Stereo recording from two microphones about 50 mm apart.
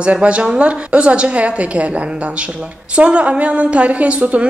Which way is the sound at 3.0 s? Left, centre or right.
Right.